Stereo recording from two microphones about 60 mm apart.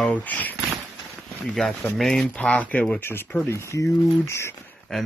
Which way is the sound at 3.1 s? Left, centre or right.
Left.